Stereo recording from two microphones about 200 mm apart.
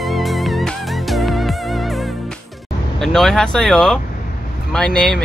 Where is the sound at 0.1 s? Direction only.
Centre (ahead or behind).